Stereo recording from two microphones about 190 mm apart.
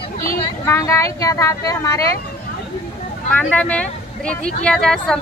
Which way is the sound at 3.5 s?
5° left (ahead or behind).